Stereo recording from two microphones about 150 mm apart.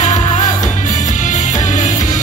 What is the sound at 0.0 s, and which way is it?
Music, 55° left (ahead or behind).